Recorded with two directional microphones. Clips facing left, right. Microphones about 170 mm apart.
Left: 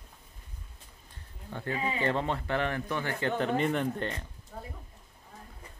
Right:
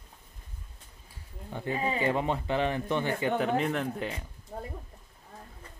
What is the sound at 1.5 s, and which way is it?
Speech, 15° right (ahead or behind).